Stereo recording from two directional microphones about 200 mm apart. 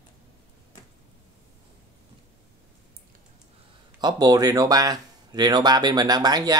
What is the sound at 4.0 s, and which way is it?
Speech, 20° right (ahead or behind).